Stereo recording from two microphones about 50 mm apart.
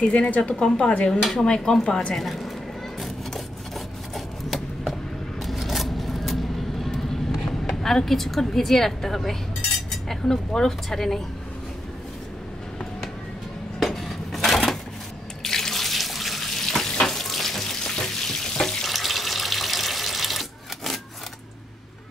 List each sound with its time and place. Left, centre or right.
0.0 s speech: centre
0.3 s speech: left
0.6 s speech: centre
4.1 s a sound: centre
7.6 s a woman's voice: centre
13.7 s a sound: centre
15.4 s water tap: centre
17.0 s frying: centre